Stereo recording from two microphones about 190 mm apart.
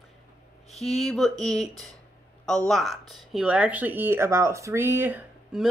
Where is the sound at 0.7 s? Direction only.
35° left (ahead or behind).